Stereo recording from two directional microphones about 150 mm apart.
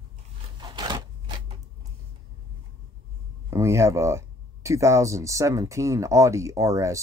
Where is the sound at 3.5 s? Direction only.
20° right (ahead or behind).